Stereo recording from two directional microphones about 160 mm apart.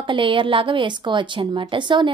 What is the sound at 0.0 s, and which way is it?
A woman's voice, 30° right (ahead or behind).